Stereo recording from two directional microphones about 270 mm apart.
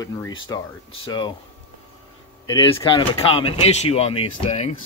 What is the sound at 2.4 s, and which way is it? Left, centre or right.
Speech, centre.